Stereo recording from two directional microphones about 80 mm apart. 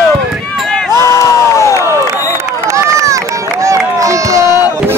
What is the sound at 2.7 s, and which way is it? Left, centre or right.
Run, right.